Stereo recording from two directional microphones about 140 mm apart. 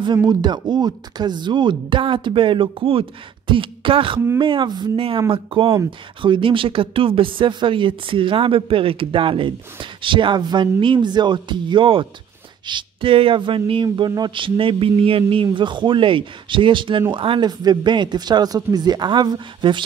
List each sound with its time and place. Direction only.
0.3 s speech: 30° right (ahead or behind)